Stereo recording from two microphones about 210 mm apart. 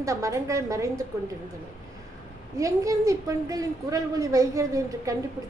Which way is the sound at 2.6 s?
15° right (ahead or behind).